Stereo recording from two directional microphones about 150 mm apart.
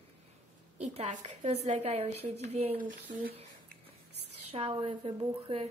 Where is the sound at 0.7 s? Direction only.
45° right (ahead or behind).